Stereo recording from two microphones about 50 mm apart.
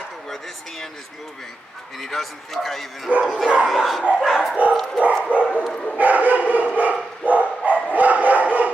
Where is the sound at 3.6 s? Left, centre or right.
Centre.